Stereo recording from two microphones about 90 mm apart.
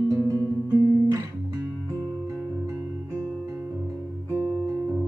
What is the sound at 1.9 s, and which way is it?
Music, 35° right (ahead or behind).